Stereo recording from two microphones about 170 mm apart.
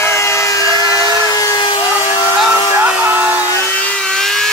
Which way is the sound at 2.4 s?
10° right (ahead or behind).